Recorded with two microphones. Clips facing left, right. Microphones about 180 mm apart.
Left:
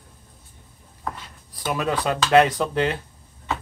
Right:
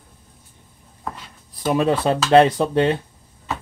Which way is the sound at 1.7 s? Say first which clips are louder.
Right 6 dB; 25° right (ahead or behind).